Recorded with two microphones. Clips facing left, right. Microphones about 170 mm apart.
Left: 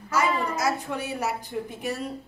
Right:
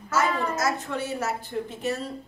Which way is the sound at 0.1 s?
10° left (ahead or behind).